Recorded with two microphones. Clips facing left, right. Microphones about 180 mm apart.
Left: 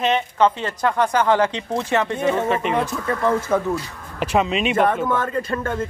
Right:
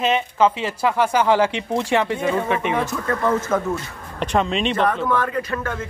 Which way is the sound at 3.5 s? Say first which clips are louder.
Left 1 dB; 15° left (ahead or behind).